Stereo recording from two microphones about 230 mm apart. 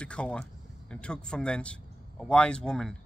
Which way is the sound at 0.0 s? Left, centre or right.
Centre.